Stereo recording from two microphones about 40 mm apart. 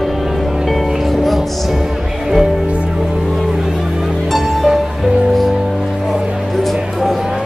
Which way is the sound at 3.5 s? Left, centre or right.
Centre.